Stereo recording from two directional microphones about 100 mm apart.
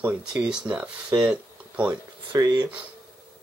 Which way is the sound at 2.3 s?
40° right (ahead or behind).